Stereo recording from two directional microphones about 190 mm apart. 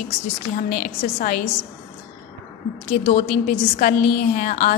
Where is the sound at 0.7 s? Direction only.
45° left (ahead or behind).